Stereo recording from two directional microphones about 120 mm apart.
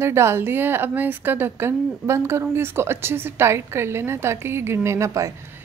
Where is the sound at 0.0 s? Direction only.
20° right (ahead or behind).